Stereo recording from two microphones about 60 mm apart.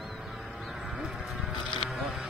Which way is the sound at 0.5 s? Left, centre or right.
Centre.